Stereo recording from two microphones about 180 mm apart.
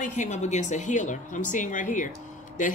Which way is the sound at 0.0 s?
45° left (ahead or behind).